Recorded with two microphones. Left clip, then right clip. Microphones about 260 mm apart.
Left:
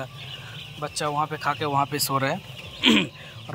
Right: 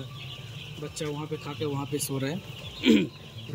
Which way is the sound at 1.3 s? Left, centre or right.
Left.